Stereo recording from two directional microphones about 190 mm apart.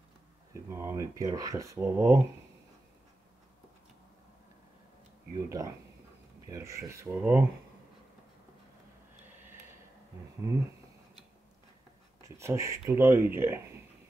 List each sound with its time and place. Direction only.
0.7 s speech: 15° right (ahead or behind)
5.3 s speech: 15° right (ahead or behind)
12.2 s speech: 15° right (ahead or behind)